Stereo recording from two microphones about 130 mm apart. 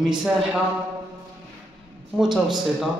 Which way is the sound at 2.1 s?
5° right (ahead or behind).